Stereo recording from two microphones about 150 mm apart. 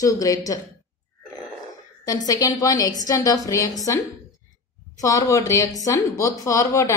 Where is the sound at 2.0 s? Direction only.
25° left (ahead or behind).